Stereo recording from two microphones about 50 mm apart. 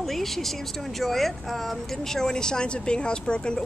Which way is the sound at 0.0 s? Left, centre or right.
Centre.